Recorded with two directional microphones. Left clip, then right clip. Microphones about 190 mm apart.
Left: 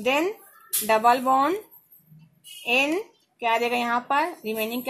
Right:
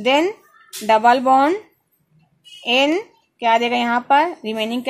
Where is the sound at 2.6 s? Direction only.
50° right (ahead or behind).